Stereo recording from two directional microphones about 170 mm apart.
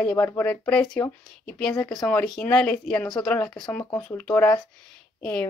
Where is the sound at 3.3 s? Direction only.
20° left (ahead or behind).